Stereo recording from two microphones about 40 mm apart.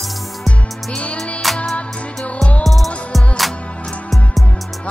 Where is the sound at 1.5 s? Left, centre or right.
Centre.